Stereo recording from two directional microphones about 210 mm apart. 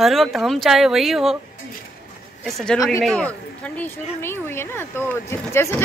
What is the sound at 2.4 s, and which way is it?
Speech, centre (ahead or behind).